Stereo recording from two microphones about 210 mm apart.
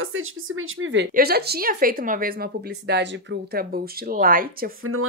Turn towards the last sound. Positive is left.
turn(degrees=-40)  # may be behind; listen again after turning